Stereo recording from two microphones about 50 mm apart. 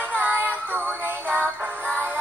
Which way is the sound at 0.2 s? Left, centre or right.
Right.